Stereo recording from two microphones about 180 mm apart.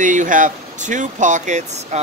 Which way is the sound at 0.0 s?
45° right (ahead or behind).